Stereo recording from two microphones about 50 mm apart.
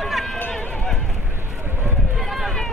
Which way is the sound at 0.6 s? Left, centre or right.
Left.